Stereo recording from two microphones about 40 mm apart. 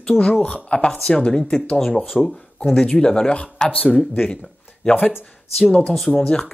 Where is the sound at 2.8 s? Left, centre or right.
Left.